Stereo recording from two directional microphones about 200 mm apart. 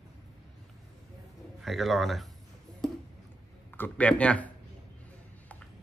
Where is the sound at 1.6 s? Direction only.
Centre (ahead or behind).